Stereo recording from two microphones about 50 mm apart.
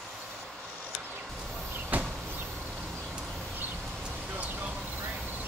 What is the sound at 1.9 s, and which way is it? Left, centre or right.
Vehicle, right.